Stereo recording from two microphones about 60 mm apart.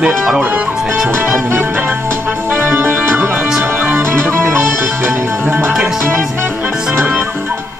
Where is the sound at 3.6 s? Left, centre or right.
Right.